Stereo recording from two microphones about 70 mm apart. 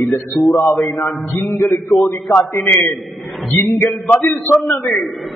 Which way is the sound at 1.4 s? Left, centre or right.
Left.